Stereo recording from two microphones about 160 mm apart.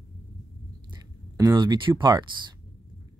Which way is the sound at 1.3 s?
25° right (ahead or behind).